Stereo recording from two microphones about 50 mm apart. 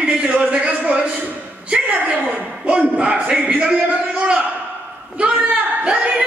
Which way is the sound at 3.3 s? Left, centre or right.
Centre.